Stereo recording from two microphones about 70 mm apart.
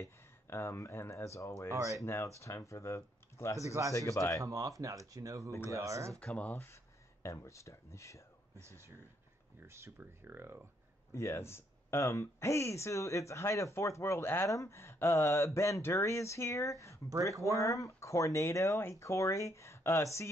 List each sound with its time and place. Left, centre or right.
0.0 s speech: left
1.7 s speech: right
2.0 s speech: left
4.4 s speech: right
6.1 s speech: centre
6.5 s speech: left
7.2 s speech: left
8.5 s speech: right
11.1 s speech: left
14.4 s speech: left